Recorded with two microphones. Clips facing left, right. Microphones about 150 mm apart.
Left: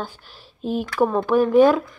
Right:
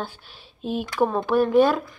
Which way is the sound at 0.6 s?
45° left (ahead or behind).